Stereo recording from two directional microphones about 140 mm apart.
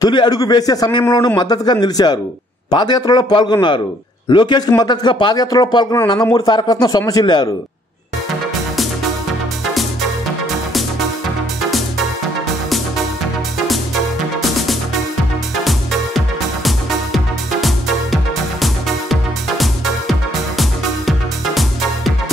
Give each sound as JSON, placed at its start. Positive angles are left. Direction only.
{"t": 0.0, "sound": "a man's voice", "side_deg": 30}
{"t": 16.6, "sound": "music", "side_deg": 0}